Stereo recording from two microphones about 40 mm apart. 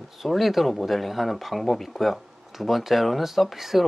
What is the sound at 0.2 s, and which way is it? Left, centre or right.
Speech, centre.